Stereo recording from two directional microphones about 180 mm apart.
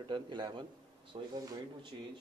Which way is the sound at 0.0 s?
25° right (ahead or behind).